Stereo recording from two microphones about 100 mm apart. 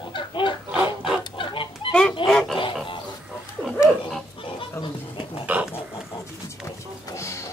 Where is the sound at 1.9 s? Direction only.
10° left (ahead or behind).